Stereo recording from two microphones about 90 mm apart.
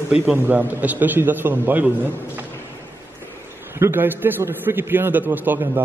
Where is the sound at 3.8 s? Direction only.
20° right (ahead or behind).